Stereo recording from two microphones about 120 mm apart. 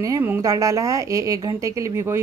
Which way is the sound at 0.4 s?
25° right (ahead or behind).